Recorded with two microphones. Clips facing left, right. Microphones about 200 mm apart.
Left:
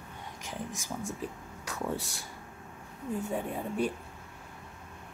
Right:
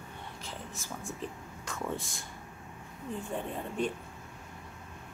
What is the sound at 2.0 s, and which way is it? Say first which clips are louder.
Speech: left 2 dB; 70° left (ahead or behind).